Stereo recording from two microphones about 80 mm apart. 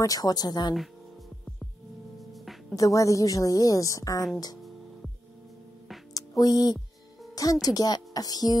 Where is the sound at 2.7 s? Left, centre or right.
Left.